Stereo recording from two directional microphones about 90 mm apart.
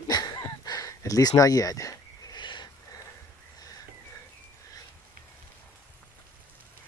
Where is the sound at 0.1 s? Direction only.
50° left (ahead or behind).